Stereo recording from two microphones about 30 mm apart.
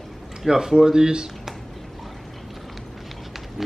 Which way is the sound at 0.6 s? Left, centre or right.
Centre.